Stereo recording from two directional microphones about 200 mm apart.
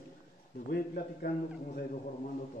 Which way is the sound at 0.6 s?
50° left (ahead or behind).